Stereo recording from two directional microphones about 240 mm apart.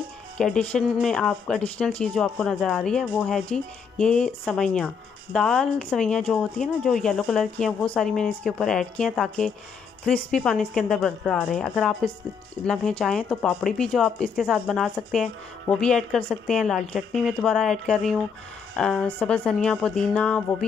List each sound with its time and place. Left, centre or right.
0.4 s speech: centre